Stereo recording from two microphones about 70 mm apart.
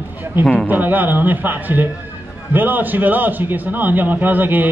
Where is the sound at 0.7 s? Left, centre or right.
Right.